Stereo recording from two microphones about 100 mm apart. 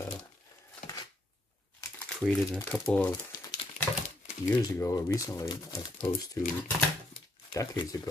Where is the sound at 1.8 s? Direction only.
30° left (ahead or behind).